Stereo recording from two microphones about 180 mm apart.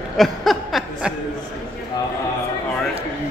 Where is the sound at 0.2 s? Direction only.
Centre (ahead or behind).